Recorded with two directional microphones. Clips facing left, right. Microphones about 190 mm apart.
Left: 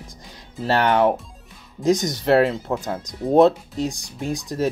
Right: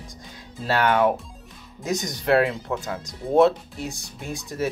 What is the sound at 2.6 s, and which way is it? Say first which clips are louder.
Speech: left 3 dB; 30° left (ahead or behind).